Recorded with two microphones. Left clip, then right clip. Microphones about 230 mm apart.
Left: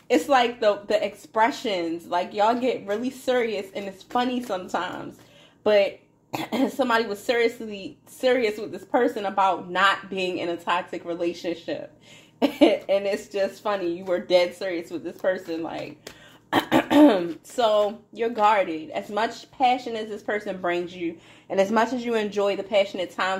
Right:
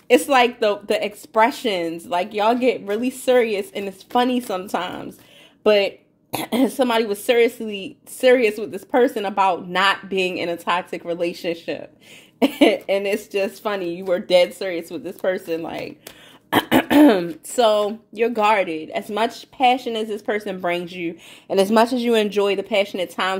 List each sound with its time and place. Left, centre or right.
0.1 s speech: right